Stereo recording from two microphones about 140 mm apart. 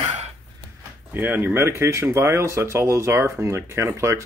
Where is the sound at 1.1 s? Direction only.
15° right (ahead or behind).